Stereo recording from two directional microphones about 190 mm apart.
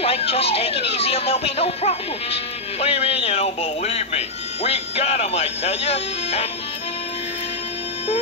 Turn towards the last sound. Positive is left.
turn(degrees=35)  # may be behind; listen again after turning